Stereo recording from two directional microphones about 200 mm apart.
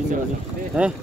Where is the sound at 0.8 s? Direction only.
5° right (ahead or behind).